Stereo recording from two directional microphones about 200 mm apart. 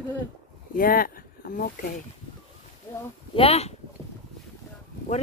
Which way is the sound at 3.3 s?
30° left (ahead or behind).